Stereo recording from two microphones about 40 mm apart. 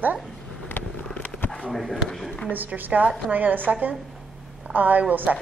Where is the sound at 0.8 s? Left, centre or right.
Left.